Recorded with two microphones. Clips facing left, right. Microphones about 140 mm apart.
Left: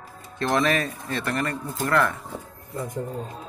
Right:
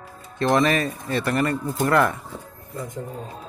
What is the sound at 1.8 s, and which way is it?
Speech, 20° right (ahead or behind).